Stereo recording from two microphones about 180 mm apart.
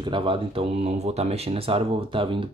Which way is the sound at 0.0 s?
30° right (ahead or behind).